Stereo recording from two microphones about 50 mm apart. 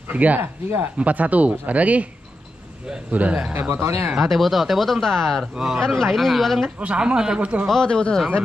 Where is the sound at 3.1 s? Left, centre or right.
Right.